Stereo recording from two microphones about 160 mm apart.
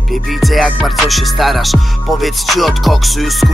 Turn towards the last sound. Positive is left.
turn(degrees=0)  # may be behind; listen again after turning